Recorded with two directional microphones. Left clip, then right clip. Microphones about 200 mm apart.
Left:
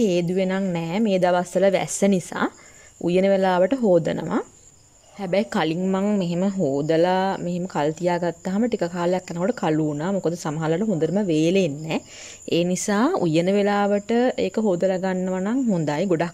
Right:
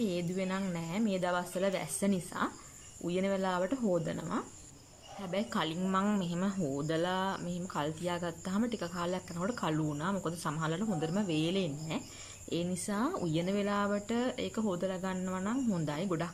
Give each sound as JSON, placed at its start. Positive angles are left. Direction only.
{"t": 0.0, "sound": "speech", "side_deg": 40}